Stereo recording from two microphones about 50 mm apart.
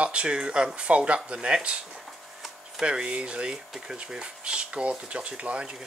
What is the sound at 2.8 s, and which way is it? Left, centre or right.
Speech, centre.